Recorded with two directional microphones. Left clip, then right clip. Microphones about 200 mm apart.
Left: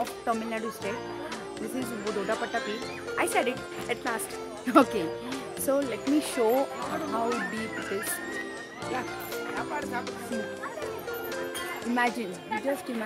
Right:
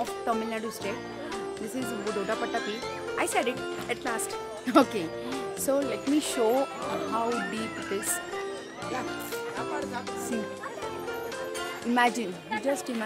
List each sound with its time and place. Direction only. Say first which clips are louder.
0.0 s speech: right 1 dB; centre (ahead or behind)
11.9 s speech: right 3 dB; 30° right (ahead or behind)